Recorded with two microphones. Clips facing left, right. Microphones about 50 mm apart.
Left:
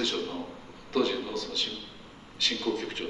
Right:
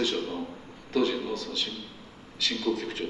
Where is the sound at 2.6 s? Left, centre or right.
Left.